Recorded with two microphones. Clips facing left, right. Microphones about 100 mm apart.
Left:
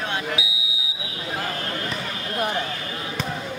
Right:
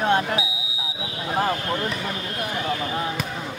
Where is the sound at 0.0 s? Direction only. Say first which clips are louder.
Right 6 dB; 40° right (ahead or behind).